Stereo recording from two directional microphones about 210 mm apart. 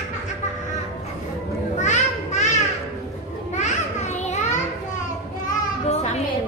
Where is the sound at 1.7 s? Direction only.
35° left (ahead or behind).